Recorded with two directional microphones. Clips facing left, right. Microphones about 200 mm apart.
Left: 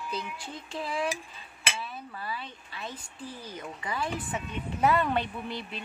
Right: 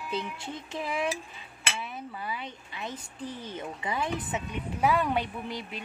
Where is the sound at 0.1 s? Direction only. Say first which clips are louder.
Right 5 dB; 20° right (ahead or behind).